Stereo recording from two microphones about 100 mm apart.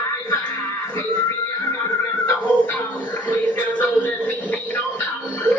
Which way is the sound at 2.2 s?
15° left (ahead or behind).